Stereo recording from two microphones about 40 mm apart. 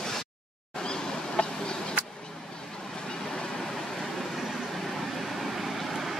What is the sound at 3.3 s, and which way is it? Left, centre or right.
Vehicle, centre.